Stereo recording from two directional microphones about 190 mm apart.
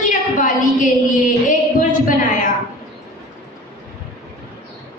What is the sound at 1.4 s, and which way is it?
Speech, 45° left (ahead or behind).